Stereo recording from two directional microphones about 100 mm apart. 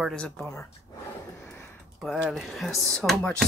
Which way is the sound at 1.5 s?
15° left (ahead or behind).